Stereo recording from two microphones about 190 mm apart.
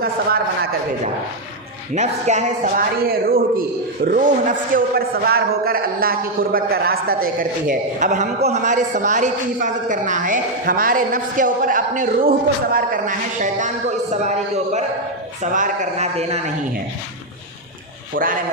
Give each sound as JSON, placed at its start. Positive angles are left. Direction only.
{"t": 2.0, "sound": "a man's voice", "side_deg": -35}
{"t": 18.1, "sound": "a man's voice", "side_deg": -45}